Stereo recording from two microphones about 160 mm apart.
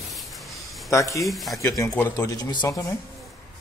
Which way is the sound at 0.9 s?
20° left (ahead or behind).